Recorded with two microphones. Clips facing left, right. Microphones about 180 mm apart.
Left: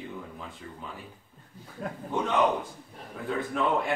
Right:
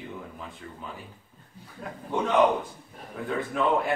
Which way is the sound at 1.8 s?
45° left (ahead or behind).